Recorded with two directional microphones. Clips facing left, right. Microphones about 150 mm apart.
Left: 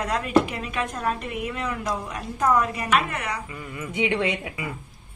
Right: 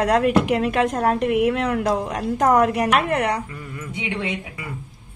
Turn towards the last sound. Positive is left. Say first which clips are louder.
# left 3 dB
turn(degrees=70)  # may be behind; listen again after turning